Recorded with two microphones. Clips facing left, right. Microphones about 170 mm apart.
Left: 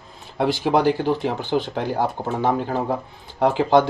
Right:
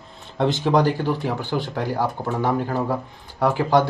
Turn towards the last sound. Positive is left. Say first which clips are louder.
# left 2 dB
turn(degrees=15)  # may be behind; listen again after turning